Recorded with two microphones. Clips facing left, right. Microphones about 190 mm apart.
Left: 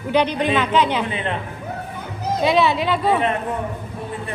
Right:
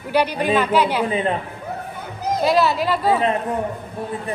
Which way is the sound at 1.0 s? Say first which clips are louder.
Right 5 dB; 35° right (ahead or behind).